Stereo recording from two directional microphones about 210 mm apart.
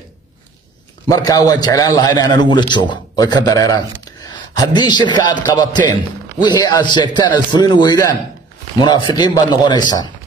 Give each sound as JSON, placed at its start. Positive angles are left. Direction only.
{"t": 1.0, "sound": "a man's voice", "side_deg": 15}